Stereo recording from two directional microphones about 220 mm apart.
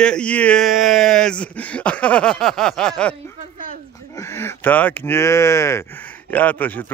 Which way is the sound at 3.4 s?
40° right (ahead or behind).